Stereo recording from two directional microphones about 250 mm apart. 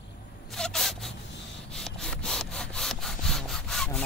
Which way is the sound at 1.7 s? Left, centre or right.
Centre.